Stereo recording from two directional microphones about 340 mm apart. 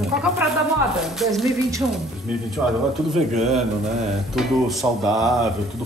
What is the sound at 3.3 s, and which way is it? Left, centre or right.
Speech, centre.